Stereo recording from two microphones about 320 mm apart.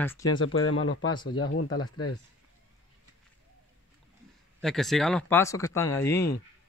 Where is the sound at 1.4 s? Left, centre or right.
Left.